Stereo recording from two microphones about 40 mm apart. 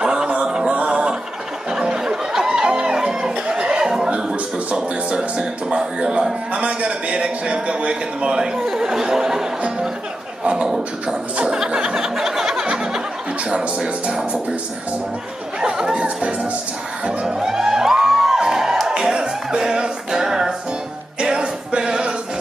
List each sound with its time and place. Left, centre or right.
0.0 s a sound: centre
0.8 s music: right
6.5 s a sound: right
7.4 s speech: right
8.7 s chatter: centre
10.4 s a sound: right
11.3 s music: right
13.5 s speech: right
15.6 s speech: right
17.4 s music: centre